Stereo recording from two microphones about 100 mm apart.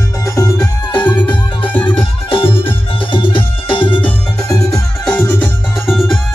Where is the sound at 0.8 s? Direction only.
45° left (ahead or behind).